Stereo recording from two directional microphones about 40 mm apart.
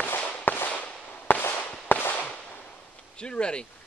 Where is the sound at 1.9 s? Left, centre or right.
Left.